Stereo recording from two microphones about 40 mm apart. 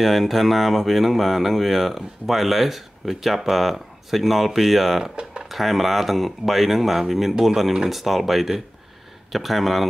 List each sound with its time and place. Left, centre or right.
0.0 s speech: centre
5.1 s speech: right
5.5 s speech: centre